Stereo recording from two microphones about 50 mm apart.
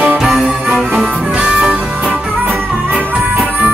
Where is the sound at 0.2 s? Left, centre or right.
Centre.